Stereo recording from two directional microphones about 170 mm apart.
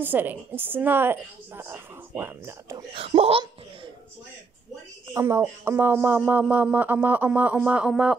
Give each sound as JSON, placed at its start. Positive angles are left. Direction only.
{"t": 0.0, "sound": "speech", "side_deg": -10}
{"t": 2.9, "sound": "speech", "side_deg": -35}
{"t": 5.1, "sound": "speech", "side_deg": -15}